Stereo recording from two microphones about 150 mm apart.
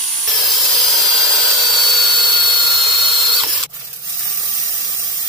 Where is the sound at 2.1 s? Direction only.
30° right (ahead or behind).